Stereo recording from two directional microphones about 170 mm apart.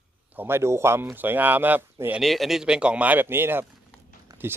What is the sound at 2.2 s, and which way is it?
A man's voice, centre (ahead or behind).